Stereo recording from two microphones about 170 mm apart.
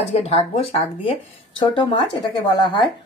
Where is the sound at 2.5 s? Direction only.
25° left (ahead or behind).